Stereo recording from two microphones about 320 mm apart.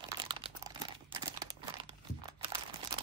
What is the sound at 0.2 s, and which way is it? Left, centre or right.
Crumpling, centre.